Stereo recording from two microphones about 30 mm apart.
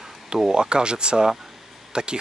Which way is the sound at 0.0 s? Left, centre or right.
Centre.